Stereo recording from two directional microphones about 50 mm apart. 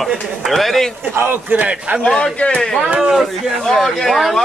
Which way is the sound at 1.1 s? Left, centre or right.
Right.